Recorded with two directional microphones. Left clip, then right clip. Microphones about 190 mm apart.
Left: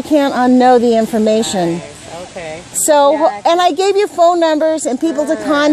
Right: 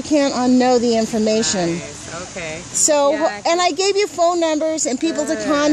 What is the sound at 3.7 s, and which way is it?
Speech, 5° left (ahead or behind).